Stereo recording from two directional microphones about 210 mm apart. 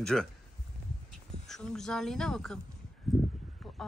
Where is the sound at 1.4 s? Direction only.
Centre (ahead or behind).